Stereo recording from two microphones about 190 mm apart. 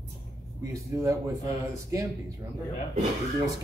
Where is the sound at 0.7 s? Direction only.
15° right (ahead or behind).